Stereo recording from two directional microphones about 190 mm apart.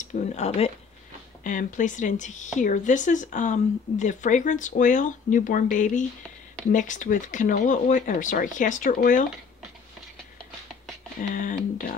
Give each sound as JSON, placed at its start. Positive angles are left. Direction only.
{"t": 0.0, "sound": "speech", "side_deg": 40}
{"t": 11.1, "sound": "speech", "side_deg": 45}